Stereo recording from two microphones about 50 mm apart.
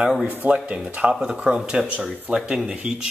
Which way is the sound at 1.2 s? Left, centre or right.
Centre.